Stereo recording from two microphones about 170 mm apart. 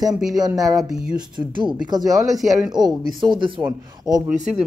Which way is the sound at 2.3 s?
Centre (ahead or behind).